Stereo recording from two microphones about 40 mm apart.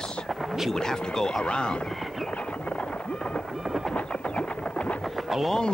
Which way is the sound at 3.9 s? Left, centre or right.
Left.